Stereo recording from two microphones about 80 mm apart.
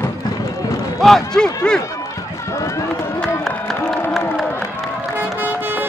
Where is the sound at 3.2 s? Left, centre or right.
Centre.